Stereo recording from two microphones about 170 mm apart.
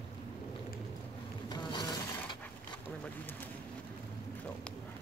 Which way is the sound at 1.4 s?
25° left (ahead or behind).